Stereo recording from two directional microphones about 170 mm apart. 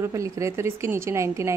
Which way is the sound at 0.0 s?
15° right (ahead or behind).